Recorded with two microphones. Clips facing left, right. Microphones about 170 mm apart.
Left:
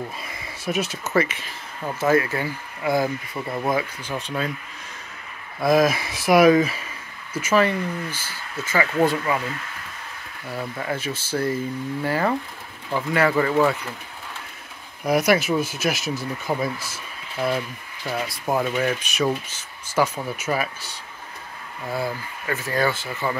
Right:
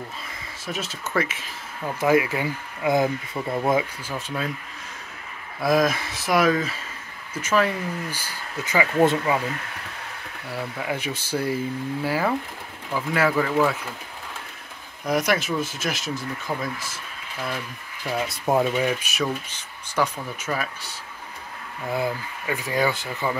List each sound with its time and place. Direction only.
0.2 s speech: 10° left (ahead or behind)
1.1 s speech: centre (ahead or behind)
2.0 s speech: 15° right (ahead or behind)
3.3 s speech: 5° right (ahead or behind)
5.6 s speech: centre (ahead or behind)
7.4 s speech: centre (ahead or behind)
8.1 s speech: 15° right (ahead or behind)
10.5 s speech: 10° right (ahead or behind)
15.0 s speech: 5° left (ahead or behind)
18.2 s speech: 25° right (ahead or behind); by 19.2 s 5° right (ahead or behind)
19.5 s speech: 5° left (ahead or behind)
21.8 s speech: 15° right (ahead or behind)